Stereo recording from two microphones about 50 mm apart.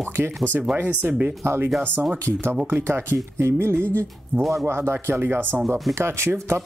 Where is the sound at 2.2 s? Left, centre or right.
Right.